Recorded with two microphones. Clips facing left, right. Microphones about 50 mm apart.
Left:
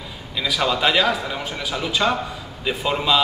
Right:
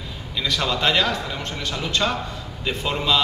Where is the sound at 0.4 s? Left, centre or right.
Centre.